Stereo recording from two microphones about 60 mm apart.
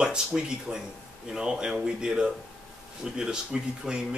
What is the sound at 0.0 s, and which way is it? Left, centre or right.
Speech, centre.